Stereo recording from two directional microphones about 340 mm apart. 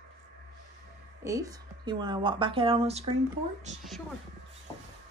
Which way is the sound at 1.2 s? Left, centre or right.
Centre.